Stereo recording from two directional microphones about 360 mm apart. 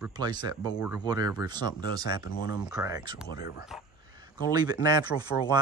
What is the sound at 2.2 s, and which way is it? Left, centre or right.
Speech, left.